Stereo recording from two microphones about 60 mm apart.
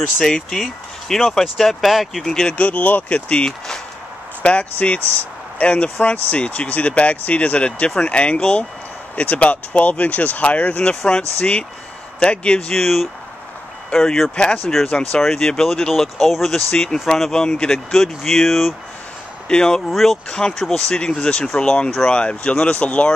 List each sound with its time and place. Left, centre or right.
0.2 s speech: centre
2.4 s speech: left
12.7 s speech: centre
14.3 s speech: centre
14.7 s speech: centre
16.5 s speech: centre
19.9 s speech: centre
20.2 s speech: centre